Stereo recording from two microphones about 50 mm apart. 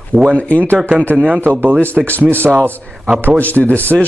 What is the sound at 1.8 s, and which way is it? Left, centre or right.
Speech, right.